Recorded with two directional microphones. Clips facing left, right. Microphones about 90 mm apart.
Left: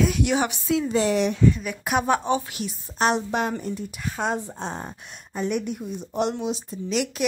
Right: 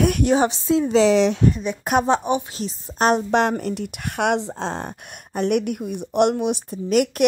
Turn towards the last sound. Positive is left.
turn(degrees=-55)  # may be behind; listen again after turning